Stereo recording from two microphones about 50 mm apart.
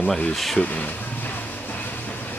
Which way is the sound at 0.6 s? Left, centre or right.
Left.